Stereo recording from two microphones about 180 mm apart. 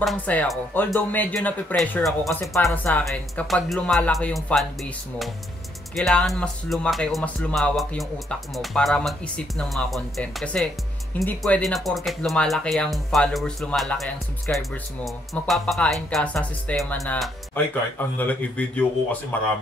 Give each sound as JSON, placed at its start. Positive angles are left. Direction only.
{"t": 0.0, "sound": "speech", "side_deg": 5}